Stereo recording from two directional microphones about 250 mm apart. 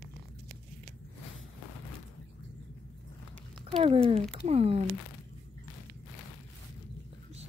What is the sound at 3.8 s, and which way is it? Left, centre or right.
Speech, right.